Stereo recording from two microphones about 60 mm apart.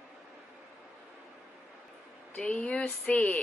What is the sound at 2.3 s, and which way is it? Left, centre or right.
Speech, centre.